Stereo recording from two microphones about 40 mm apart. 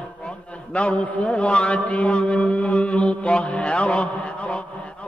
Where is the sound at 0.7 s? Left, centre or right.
Left.